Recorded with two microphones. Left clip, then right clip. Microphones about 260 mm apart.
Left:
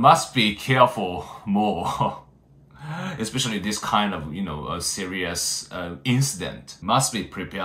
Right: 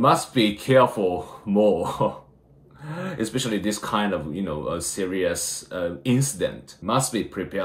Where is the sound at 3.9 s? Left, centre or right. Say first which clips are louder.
Left 4 dB; centre.